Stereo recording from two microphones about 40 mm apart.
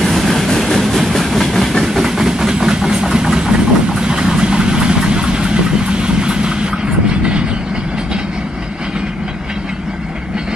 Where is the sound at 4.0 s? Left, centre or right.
Centre.